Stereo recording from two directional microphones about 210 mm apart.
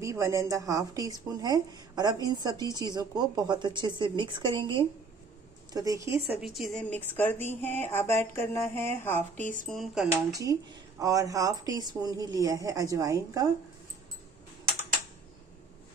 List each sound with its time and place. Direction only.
0.0 s speech: 15° right (ahead or behind)
6.4 s a woman's voice: centre (ahead or behind)
7.2 s a sound: 10° left (ahead or behind)
9.7 s a woman's voice: centre (ahead or behind)
10.3 s speech: 15° right (ahead or behind)